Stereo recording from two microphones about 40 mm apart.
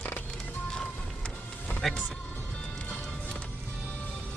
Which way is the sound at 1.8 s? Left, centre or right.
Centre.